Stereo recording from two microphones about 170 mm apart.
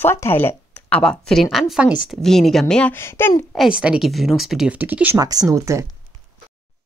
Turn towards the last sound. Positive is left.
turn(degrees=-20)  # may be behind; listen again after turning